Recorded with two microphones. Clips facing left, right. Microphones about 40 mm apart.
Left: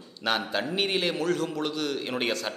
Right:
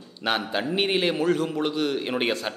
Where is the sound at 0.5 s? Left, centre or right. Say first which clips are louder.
Right 3 dB; centre.